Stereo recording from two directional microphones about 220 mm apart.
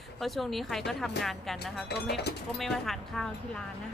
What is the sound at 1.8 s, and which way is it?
Speech, 50° left (ahead or behind).